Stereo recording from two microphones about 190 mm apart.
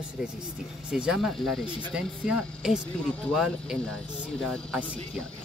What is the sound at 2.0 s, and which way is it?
Speech, 5° right (ahead or behind).